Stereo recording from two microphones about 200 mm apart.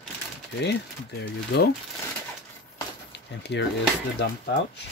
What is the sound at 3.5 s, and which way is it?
Speech, 60° left (ahead or behind).